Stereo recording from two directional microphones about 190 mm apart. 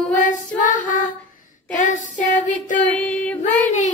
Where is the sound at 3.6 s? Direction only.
40° left (ahead or behind).